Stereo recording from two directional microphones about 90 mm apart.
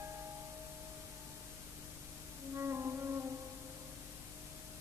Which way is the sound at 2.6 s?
30° right (ahead or behind).